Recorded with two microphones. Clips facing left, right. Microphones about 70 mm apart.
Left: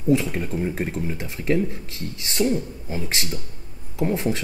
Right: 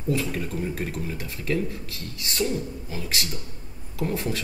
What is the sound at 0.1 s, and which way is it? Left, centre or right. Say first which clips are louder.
Speech: left 6 dB; left.